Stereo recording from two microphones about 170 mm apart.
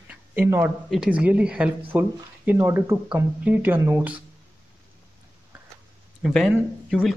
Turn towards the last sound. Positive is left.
turn(degrees=0)  # may be behind; listen again after turning